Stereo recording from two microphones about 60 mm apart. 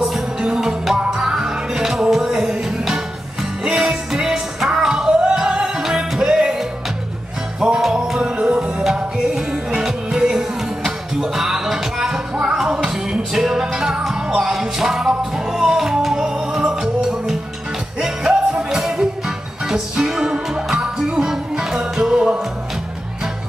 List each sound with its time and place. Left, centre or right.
0.0 s music: centre
7.6 s music: centre